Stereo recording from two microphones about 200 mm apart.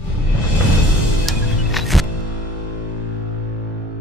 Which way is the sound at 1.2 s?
Centre (ahead or behind).